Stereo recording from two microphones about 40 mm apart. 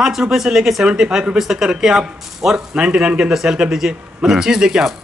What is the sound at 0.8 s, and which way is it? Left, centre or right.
Speech, centre.